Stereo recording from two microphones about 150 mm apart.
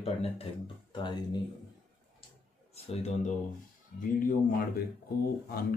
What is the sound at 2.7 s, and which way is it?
Speech, 45° left (ahead or behind).